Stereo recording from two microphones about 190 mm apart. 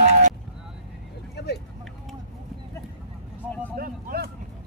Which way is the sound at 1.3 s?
60° left (ahead or behind).